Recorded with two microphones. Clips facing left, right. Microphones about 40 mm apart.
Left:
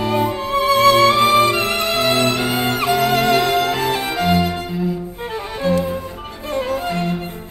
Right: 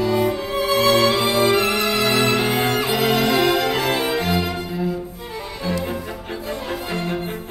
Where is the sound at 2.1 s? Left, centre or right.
Right.